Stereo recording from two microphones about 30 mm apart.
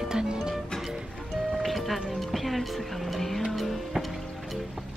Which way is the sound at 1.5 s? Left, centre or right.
Centre.